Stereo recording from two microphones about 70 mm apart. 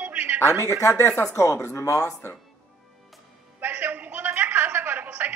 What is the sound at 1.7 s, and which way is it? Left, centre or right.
Speech, left.